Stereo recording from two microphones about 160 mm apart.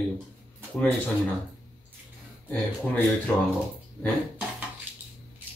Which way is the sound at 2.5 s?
10° left (ahead or behind).